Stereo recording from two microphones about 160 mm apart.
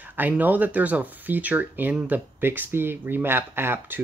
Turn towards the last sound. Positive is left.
turn(degrees=-15)  # may be behind; listen again after turning